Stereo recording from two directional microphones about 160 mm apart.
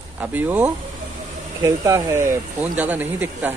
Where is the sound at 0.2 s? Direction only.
10° right (ahead or behind).